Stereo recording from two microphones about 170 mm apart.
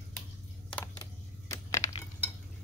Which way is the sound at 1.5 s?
15° left (ahead or behind).